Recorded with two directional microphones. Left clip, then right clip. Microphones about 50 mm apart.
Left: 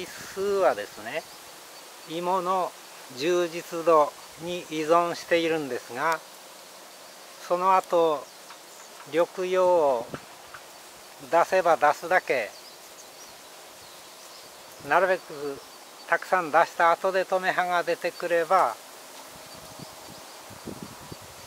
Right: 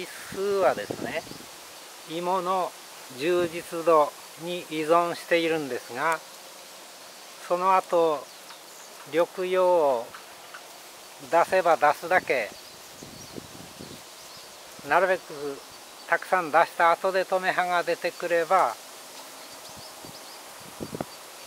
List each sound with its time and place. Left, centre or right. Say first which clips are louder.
0.0 s speech: even; centre
2.0 s speech: even; left
3.7 s speech: even; centre
7.4 s speech: even; centre
9.4 s speech: even; centre
11.2 s speech: even; centre
14.9 s speech: even; centre